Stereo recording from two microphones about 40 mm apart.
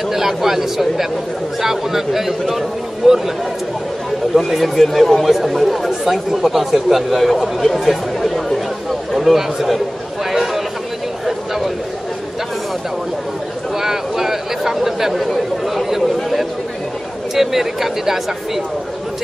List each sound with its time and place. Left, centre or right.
0.1 s speech: centre
4.4 s speech: centre
7.8 s chatter: centre
9.1 s a man's voice: centre
10.3 s a sound: centre
13.7 s chatter: centre
17.4 s speech: centre